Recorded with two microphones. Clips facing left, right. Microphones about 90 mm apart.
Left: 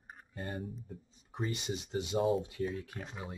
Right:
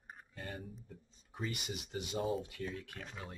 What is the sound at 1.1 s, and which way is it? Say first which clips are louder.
Speech: left 4 dB; 25° left (ahead or behind).